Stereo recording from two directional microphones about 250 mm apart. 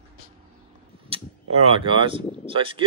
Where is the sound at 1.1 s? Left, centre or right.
Right.